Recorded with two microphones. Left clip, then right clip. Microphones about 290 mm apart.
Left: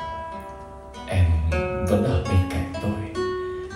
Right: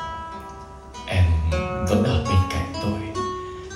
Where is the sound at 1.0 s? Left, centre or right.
Centre.